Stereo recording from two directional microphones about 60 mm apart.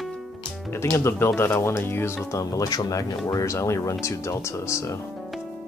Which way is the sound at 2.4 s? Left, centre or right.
Left.